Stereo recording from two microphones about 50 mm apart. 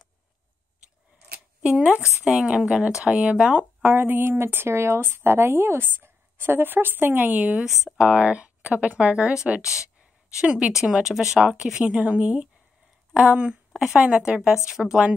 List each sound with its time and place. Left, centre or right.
2.2 s speech: centre
3.8 s speech: right
4.2 s speech: right
5.9 s speech: right
7.6 s speech: centre
8.1 s speech: right
14.0 s speech: centre